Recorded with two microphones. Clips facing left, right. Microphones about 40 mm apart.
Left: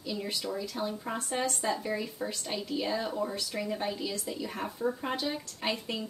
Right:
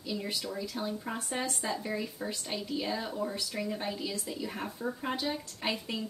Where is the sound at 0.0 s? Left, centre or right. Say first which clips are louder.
Left 1 dB; centre.